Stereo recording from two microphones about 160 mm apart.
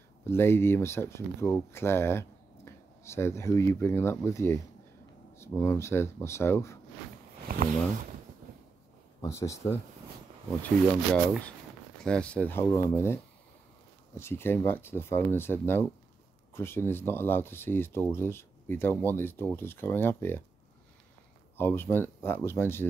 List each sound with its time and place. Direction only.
0.3 s speech: 15° left (ahead or behind)
7.4 s speech: 65° right (ahead or behind)
9.2 s speech: 20° left (ahead or behind)
21.5 s speech: 15° left (ahead or behind)